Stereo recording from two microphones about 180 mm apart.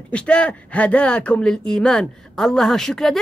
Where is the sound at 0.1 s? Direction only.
5° left (ahead or behind).